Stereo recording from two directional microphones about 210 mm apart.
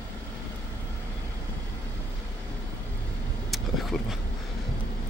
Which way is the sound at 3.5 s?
Centre (ahead or behind).